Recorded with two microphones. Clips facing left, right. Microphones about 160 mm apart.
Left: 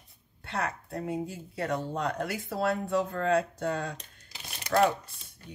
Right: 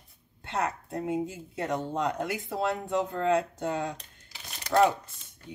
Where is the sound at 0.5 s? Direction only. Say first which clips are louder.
Right 2 dB; 20° right (ahead or behind).